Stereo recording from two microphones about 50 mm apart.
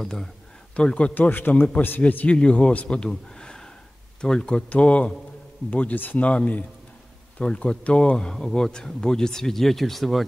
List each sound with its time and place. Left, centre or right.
0.0 s speech: centre
0.8 s speech: left
1.1 s a man's voice: left
2.3 s speech: left
2.9 s a sound: centre
4.2 s speech: centre
4.6 s speech: left; by 10.2 s centre